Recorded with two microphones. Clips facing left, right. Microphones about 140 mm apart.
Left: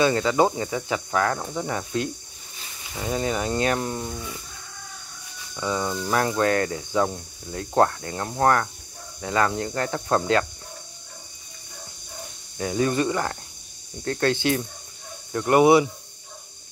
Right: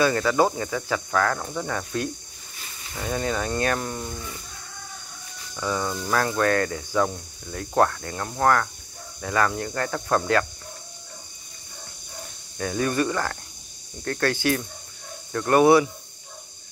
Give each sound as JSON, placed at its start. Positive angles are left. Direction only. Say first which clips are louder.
{"t": 0.0, "sound": "cricket", "louder": "left 1 dB", "side_deg": 20}
{"t": 5.6, "sound": "speech", "louder": "left 1 dB", "side_deg": 15}
{"t": 6.0, "sound": "cricket", "louder": "even", "side_deg": 20}
{"t": 12.5, "sound": "cricket", "louder": "left 1 dB", "side_deg": 20}